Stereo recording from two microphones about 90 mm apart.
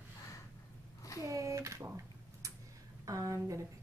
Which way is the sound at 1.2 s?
40° right (ahead or behind).